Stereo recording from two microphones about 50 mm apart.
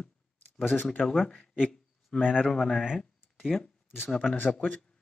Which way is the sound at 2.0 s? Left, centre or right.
Centre.